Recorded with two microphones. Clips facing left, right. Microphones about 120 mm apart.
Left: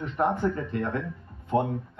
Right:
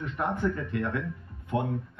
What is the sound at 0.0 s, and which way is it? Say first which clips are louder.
Speech: left 4 dB; 30° left (ahead or behind).